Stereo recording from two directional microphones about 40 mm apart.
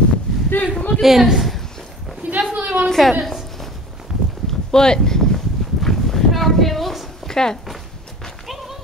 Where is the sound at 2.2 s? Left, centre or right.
Right.